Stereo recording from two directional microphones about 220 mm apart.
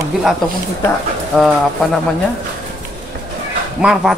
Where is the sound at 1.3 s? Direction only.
Centre (ahead or behind).